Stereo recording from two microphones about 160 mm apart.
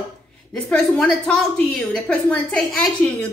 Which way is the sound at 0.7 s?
5° left (ahead or behind).